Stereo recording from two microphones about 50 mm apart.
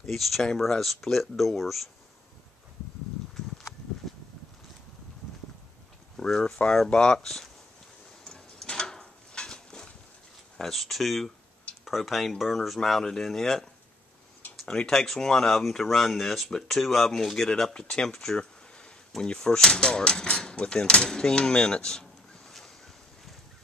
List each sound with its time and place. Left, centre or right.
0.0 s speech: centre
6.1 s speech: centre
8.6 s a sound: centre
10.6 s speech: centre